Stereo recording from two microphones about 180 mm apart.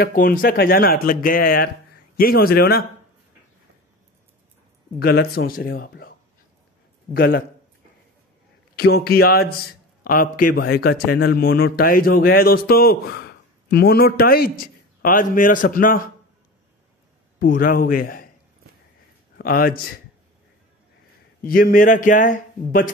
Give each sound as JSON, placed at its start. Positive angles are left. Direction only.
{"t": 0.0, "sound": "a man's voice", "side_deg": 55}
{"t": 4.9, "sound": "a man's voice", "side_deg": 60}
{"t": 7.2, "sound": "a man's voice", "side_deg": 55}
{"t": 8.7, "sound": "a man's voice", "side_deg": 60}
{"t": 17.4, "sound": "speech", "side_deg": 50}
{"t": 19.3, "sound": "a man's voice", "side_deg": 55}
{"t": 21.5, "sound": "speech", "side_deg": 50}